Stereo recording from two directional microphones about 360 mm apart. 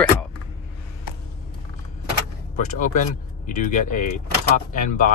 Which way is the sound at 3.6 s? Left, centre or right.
Left.